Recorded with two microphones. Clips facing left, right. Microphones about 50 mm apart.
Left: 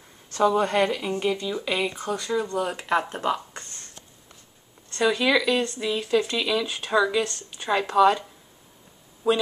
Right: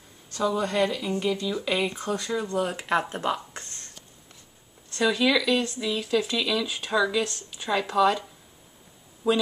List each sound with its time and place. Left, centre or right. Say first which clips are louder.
0.3 s speech: left 5 dB; left; by 1.4 s centre
1.4 s speech: even; centre
5.0 s speech: left 1 dB; centre
7.2 s speech: left 2 dB; centre
7.9 s speech: left 4 dB; centre